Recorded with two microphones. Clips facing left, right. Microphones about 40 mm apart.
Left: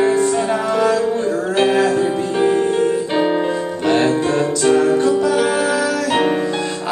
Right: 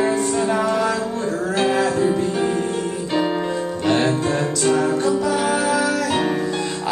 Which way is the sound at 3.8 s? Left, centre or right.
Centre.